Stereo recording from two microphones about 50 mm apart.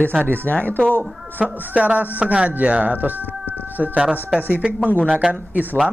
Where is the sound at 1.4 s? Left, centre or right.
Right.